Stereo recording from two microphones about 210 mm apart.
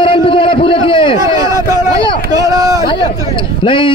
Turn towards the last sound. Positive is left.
turn(degrees=25)  # may be behind; listen again after turning